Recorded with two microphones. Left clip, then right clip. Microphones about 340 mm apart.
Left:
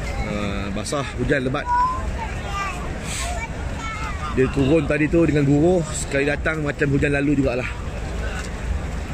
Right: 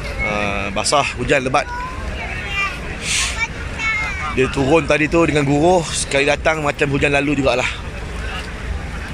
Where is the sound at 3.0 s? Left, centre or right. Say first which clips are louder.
Right 13 dB; centre.